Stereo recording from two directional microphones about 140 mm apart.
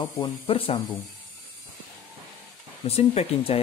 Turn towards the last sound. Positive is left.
turn(degrees=45)  # may be behind; listen again after turning